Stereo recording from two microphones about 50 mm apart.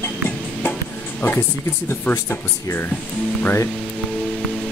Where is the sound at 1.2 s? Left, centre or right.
Left.